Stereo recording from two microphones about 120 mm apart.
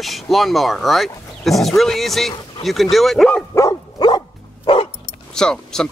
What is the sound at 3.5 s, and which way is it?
Dog, 30° left (ahead or behind).